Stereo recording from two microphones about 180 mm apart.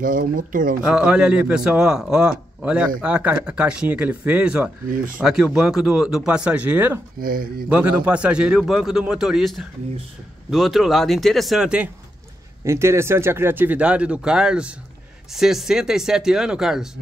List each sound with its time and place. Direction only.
0.0 s speech: 50° right (ahead or behind)
0.8 s a man's voice: 5° right (ahead or behind)
4.9 s speech: 50° right (ahead or behind)
5.2 s a man's voice: 5° right (ahead or behind)
7.2 s speech: 55° right (ahead or behind)
7.7 s a man's voice: 5° right (ahead or behind)